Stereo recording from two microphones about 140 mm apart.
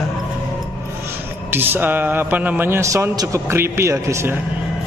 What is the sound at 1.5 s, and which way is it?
A man's voice, 15° right (ahead or behind).